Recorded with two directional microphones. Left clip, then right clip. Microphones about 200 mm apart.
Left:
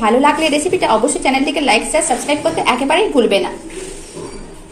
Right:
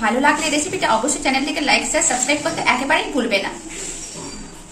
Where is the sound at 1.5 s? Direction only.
20° left (ahead or behind).